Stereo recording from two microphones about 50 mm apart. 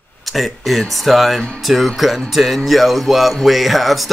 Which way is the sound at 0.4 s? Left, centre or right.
Centre.